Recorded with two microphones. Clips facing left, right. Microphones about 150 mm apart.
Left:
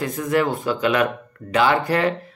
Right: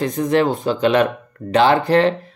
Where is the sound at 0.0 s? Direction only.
25° right (ahead or behind).